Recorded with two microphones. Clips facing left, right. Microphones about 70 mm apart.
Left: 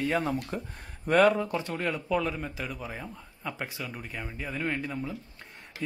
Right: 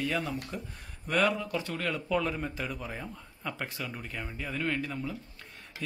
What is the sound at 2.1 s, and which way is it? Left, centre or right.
A man's voice, centre.